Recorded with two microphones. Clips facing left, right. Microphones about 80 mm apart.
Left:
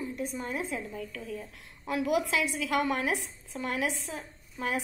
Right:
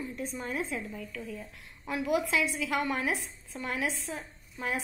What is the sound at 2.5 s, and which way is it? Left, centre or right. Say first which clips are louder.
Speech: left 2 dB; left.